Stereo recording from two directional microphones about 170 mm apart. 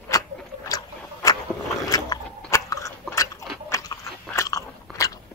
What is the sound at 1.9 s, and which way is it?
Chewing, 20° left (ahead or behind).